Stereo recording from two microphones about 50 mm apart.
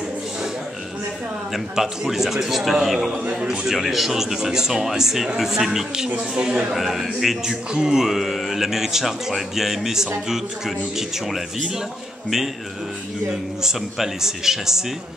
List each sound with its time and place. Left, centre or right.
1.5 s a man's voice: centre
6.7 s a man's voice: centre
13.3 s speech: centre